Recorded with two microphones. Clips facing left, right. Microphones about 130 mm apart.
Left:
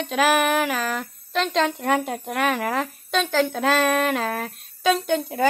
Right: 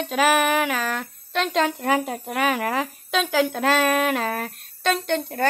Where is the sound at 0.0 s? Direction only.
Centre (ahead or behind).